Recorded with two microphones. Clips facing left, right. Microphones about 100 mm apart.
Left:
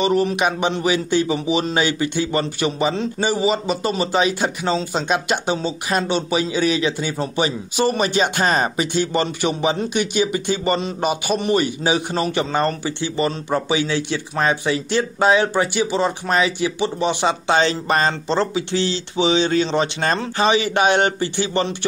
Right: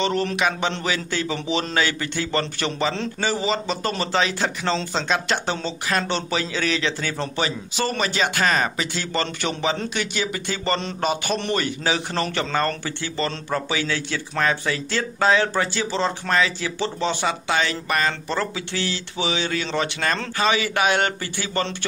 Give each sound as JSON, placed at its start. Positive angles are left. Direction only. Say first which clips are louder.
{"t": 0.0, "sound": "a man's voice", "louder": "left 4 dB", "side_deg": 10}